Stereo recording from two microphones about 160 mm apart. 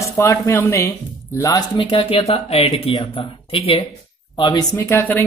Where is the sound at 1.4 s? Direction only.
30° left (ahead or behind).